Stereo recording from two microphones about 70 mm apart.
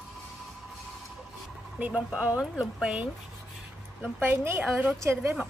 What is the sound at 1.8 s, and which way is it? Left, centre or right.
A woman's voice, centre.